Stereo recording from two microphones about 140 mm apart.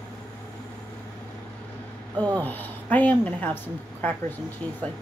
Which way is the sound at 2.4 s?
10° left (ahead or behind).